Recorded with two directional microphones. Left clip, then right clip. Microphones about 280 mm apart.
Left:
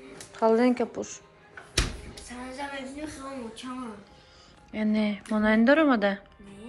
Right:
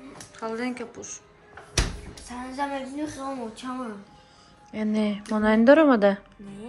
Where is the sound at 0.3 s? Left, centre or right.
Centre.